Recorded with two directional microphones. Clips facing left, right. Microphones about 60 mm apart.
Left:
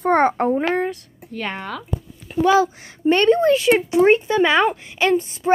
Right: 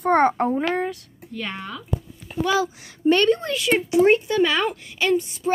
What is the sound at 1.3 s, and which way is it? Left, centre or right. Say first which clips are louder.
A woman's voice: left 4 dB; left.